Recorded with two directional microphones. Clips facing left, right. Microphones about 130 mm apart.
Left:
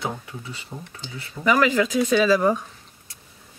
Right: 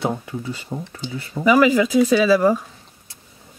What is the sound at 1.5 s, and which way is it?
Speech, 10° right (ahead or behind).